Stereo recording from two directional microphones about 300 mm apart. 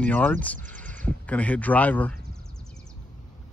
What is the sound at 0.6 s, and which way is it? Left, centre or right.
Horse, right.